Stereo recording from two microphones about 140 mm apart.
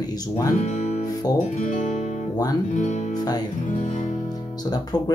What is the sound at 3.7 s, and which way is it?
Music, 65° left (ahead or behind).